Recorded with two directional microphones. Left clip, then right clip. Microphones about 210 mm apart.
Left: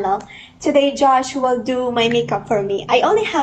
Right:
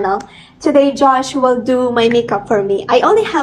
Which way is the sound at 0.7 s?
25° right (ahead or behind).